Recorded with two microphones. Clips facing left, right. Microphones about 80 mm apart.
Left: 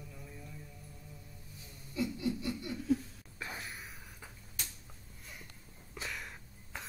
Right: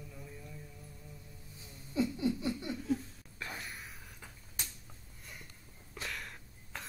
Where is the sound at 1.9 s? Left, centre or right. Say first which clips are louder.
Right 3 dB; right.